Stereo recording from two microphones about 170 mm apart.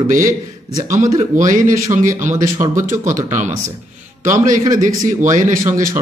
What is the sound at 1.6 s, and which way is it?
Speech, 50° right (ahead or behind).